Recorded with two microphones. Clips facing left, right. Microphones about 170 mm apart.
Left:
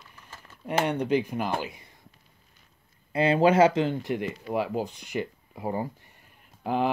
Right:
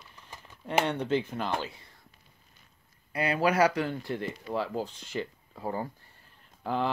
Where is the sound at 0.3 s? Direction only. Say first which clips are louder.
Even; 15° right (ahead or behind).